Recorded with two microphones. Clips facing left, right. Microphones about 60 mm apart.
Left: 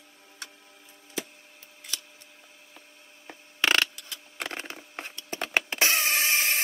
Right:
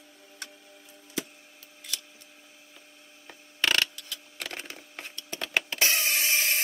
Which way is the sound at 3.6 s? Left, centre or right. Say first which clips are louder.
Left 2 dB; left.